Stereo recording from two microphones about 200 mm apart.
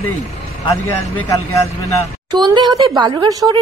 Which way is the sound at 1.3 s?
15° left (ahead or behind).